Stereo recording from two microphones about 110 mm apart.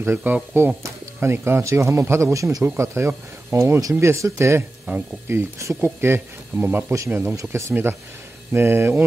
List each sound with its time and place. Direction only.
0.0 s speech: 20° right (ahead or behind)